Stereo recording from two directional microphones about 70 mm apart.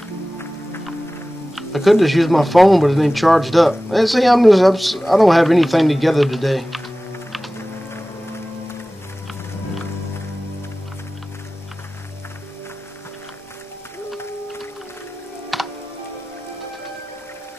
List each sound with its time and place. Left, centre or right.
1.5 s speech: centre
7.5 s music: left
15.5 s music: centre